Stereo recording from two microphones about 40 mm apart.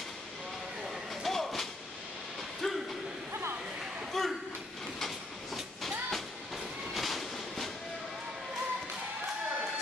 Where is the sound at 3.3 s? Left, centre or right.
Right.